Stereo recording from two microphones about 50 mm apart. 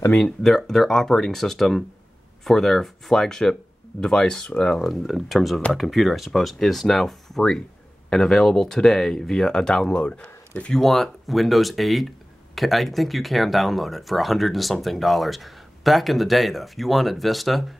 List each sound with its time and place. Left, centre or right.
0.4 s speech: centre
4.8 s speech: centre; by 10.2 s left
10.2 s a sound: left
10.7 s speech: centre